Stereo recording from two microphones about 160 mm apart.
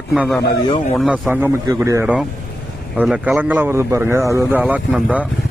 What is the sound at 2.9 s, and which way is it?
Speech, 10° right (ahead or behind).